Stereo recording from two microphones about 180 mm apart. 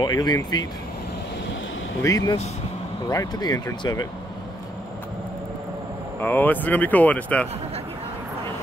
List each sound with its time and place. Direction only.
0.0 s speech: 20° left (ahead or behind)
2.0 s speech: 20° left (ahead or behind)
6.1 s speech: 10° left (ahead or behind)